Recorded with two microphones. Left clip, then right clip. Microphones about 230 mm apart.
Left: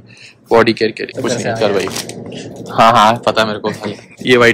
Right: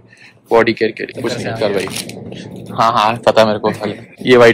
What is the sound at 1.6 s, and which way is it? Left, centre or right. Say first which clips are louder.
Speech: left 1 dB; centre.